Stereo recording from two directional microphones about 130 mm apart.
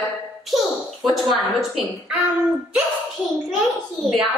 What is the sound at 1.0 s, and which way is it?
A woman's voice, centre (ahead or behind).